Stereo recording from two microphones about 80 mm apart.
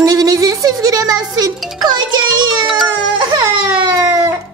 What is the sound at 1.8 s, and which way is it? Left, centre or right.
Music, right.